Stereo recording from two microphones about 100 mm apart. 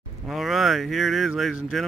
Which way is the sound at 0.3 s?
Centre (ahead or behind).